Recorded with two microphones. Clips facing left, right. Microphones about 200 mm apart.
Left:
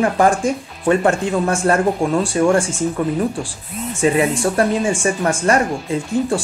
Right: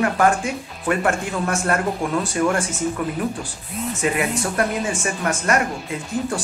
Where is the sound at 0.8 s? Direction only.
30° left (ahead or behind).